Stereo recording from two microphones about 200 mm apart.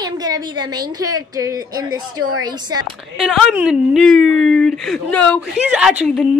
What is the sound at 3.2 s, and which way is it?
Speech, centre (ahead or behind).